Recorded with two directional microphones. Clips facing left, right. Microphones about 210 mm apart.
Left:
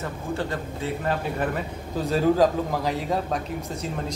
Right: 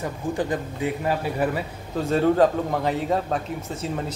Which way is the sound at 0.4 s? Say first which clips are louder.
Right 6 dB; 15° right (ahead or behind).